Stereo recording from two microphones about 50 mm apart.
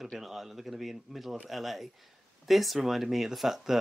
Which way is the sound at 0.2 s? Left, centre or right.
Centre.